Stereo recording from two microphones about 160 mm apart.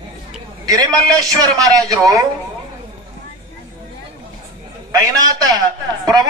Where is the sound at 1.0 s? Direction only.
25° right (ahead or behind).